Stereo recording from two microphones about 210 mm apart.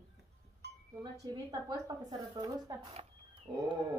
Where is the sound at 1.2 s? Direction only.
20° right (ahead or behind).